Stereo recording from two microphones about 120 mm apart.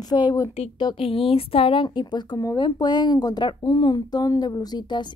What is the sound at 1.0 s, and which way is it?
Speech, 50° left (ahead or behind).